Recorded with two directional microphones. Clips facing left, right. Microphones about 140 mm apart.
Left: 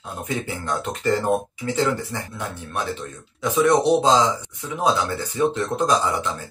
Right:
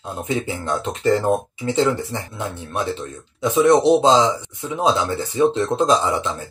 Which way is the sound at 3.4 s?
25° right (ahead or behind).